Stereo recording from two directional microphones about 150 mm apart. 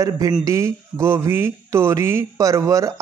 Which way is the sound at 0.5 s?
20° right (ahead or behind).